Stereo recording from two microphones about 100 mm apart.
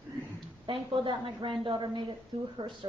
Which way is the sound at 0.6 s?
55° right (ahead or behind).